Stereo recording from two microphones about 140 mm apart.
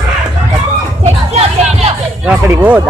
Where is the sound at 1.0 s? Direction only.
50° right (ahead or behind).